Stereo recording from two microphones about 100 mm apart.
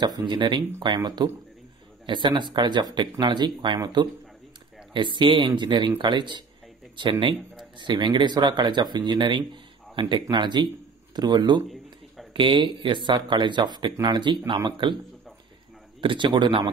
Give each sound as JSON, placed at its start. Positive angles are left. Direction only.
{"t": 0.0, "sound": "speech", "side_deg": -50}
{"t": 16.0, "sound": "speech", "side_deg": -55}